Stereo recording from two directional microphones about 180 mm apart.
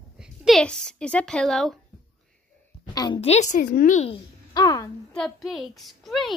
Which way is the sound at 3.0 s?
30° left (ahead or behind).